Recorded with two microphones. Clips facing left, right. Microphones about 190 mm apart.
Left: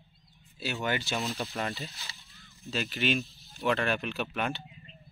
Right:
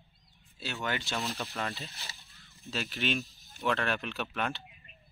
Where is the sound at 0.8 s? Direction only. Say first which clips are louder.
Left 2 dB; 5° left (ahead or behind).